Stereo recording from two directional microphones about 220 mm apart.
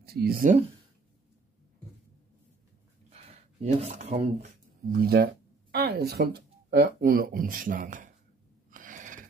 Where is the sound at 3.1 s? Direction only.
30° right (ahead or behind).